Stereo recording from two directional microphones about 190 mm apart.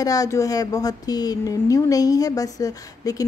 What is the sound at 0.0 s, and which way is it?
Speech, 20° left (ahead or behind).